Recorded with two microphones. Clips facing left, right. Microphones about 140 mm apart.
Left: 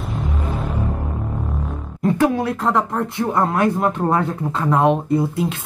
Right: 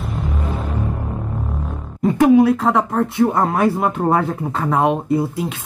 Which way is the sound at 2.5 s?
Centre (ahead or behind).